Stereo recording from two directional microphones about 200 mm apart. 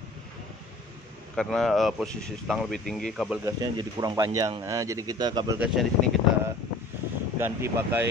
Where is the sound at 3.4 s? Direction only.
15° right (ahead or behind).